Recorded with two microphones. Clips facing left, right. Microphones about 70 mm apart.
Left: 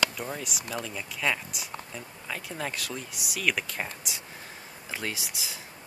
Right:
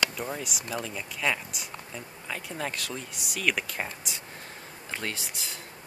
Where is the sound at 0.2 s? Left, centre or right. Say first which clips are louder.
Right 1 dB; centre.